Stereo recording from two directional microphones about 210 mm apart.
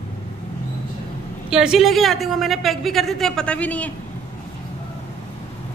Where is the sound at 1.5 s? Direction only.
5° right (ahead or behind).